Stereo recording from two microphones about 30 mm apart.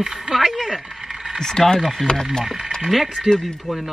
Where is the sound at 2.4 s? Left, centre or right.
Centre.